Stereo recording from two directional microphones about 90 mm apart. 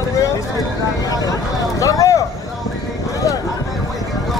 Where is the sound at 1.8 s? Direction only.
40° left (ahead or behind).